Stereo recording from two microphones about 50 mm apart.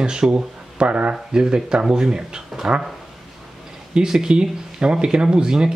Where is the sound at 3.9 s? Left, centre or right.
Centre.